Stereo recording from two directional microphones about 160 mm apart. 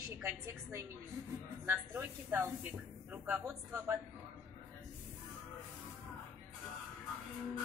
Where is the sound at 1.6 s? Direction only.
15° right (ahead or behind).